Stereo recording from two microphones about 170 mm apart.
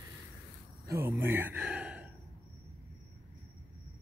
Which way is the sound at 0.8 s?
20° right (ahead or behind).